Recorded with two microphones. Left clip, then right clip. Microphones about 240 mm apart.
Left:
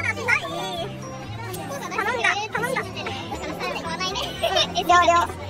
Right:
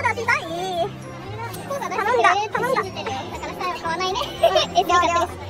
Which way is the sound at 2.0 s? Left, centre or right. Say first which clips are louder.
Right 5 dB; centre.